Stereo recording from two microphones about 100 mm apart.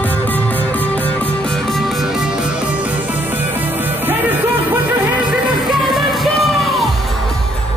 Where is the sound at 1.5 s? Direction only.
5° left (ahead or behind); by 5.4 s 15° right (ahead or behind).